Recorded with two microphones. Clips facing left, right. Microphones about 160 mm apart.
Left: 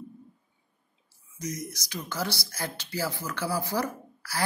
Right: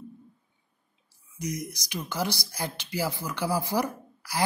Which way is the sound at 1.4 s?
15° right (ahead or behind).